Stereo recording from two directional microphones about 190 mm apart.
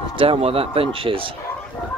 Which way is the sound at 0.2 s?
30° right (ahead or behind).